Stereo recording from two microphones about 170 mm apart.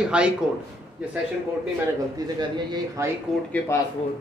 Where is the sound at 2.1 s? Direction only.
20° right (ahead or behind).